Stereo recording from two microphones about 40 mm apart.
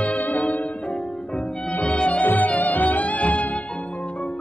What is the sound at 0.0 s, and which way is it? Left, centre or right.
Music, left.